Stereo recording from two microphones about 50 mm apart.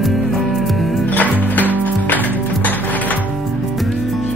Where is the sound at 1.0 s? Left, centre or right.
Left.